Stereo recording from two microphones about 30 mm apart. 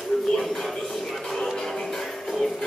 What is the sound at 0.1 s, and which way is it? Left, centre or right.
Music, centre.